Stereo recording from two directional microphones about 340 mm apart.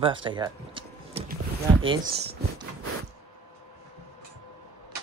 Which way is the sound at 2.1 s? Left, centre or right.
Right.